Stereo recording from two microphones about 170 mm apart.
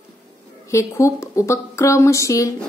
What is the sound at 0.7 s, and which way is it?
A woman's voice, 15° left (ahead or behind).